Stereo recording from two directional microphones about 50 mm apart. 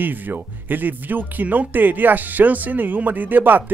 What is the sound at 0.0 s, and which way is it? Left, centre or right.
Speech, right.